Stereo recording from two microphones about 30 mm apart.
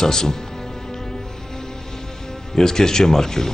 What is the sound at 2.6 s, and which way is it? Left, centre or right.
Speech, centre.